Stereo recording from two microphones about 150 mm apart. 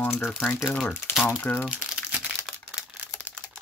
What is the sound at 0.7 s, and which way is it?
Speech, 15° left (ahead or behind).